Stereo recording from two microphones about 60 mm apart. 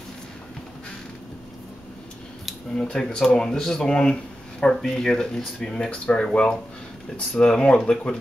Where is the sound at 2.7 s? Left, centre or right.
Centre.